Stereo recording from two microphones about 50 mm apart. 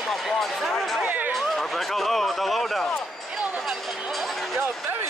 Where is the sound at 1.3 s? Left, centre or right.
Centre.